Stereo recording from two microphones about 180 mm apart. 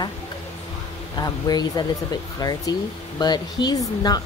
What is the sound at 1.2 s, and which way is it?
Speech, 20° left (ahead or behind).